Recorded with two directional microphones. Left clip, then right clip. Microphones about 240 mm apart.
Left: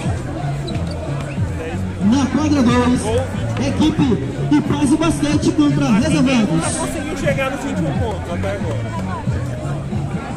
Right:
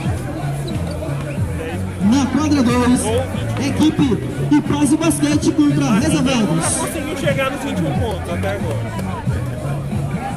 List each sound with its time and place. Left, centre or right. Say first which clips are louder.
2.0 s a man's voice: even; right
7.2 s speech: even; centre